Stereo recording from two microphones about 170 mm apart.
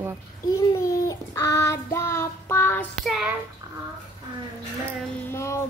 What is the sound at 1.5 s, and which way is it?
Child singing, 15° left (ahead or behind).